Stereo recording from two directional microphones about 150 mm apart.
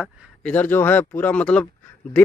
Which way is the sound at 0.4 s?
10° left (ahead or behind).